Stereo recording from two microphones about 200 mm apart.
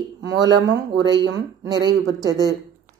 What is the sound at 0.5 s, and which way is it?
Speech, 60° right (ahead or behind).